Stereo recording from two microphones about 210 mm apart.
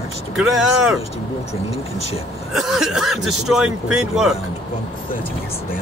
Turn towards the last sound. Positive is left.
turn(degrees=-5)  # may be behind; listen again after turning